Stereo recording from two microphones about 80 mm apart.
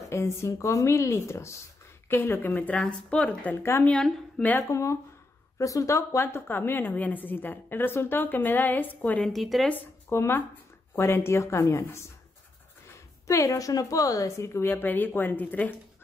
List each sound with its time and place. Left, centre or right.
0.1 s a woman's voice: left
4.6 s a woman's voice: left
9.2 s a woman's voice: centre
10.0 s speech: left
13.3 s a woman's voice: left
14.7 s a woman's voice: left